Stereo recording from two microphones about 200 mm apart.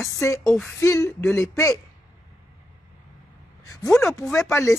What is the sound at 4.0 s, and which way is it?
Speech, 15° left (ahead or behind).